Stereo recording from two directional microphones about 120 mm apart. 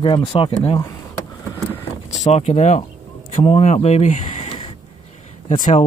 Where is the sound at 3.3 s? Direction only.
50° left (ahead or behind).